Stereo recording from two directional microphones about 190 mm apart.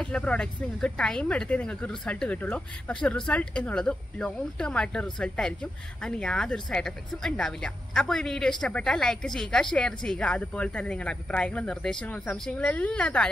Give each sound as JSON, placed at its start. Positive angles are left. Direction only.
{"t": 0.0, "sound": "speech", "side_deg": 5}